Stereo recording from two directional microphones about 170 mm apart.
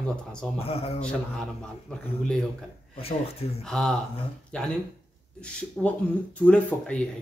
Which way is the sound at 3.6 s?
5° left (ahead or behind).